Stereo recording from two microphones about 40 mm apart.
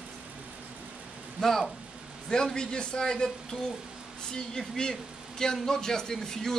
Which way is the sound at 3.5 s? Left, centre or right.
Left.